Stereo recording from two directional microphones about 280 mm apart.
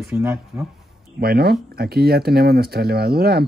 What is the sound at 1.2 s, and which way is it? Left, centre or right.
Speech, right.